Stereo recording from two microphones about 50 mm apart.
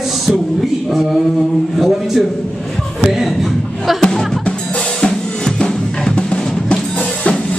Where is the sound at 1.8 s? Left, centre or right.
Centre.